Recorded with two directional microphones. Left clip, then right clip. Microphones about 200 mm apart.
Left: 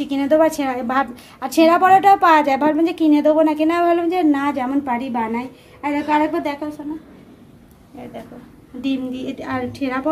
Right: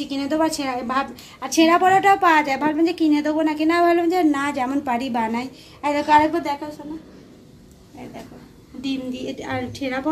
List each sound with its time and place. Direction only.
0.0 s a woman's voice: 35° left (ahead or behind)
4.3 s a woman's voice: 10° left (ahead or behind)
4.8 s a woman's voice: 15° right (ahead or behind)
8.8 s a woman's voice: 20° left (ahead or behind)